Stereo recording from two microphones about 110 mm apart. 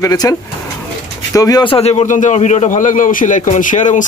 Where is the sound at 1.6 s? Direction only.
65° left (ahead or behind); by 4.0 s 90° left.